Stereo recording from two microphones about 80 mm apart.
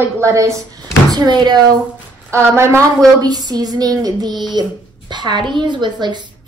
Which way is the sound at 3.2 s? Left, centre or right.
Right.